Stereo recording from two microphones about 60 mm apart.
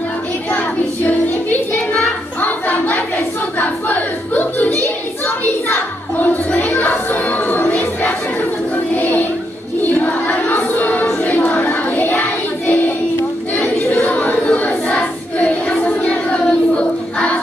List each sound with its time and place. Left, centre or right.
0.5 s child singing: left
1.7 s a sound: left
6.8 s music: left
8.9 s child singing: left
9.9 s a sound: left
11.1 s child singing: left
13.6 s chatter: left
14.9 s child singing: left